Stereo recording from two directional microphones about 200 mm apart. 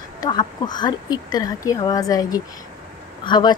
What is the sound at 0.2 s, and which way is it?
Speech, 20° left (ahead or behind).